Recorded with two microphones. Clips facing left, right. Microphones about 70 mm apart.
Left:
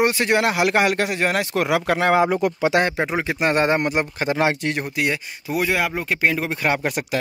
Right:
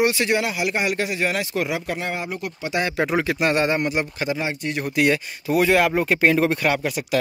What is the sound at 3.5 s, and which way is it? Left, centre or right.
Speech, left.